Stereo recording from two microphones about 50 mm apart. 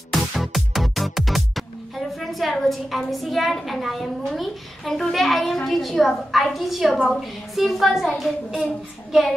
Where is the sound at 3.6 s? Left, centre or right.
Centre.